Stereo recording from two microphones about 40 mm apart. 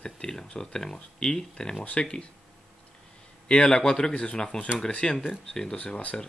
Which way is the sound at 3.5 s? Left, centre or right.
Centre.